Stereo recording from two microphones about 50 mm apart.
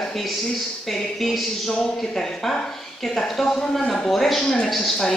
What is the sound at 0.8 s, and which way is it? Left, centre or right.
A woman's voice, centre.